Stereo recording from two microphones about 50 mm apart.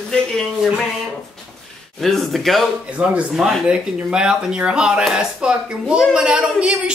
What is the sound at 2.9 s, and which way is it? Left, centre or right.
A woman's voice, right.